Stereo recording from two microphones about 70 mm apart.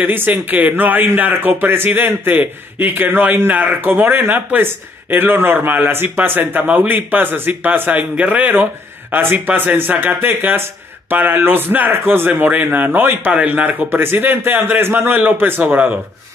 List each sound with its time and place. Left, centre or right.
0.0 s speech: right